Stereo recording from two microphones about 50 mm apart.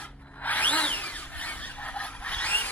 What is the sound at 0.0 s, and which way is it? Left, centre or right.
Tools, left.